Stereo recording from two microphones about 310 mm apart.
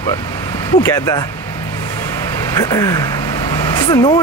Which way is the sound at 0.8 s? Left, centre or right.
Centre.